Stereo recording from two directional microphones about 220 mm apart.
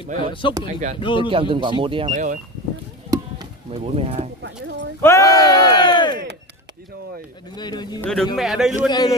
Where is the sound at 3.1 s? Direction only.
20° right (ahead or behind).